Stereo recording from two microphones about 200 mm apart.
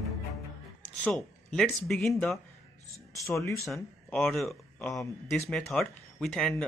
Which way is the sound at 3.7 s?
5° left (ahead or behind).